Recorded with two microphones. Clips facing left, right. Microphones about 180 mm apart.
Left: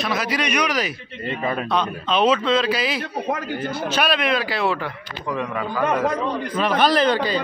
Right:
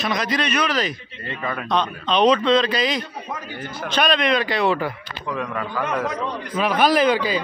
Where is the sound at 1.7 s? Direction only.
5° left (ahead or behind).